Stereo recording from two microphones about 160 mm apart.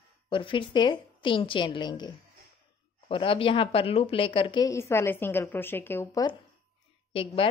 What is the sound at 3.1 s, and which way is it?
A woman's voice, 35° left (ahead or behind).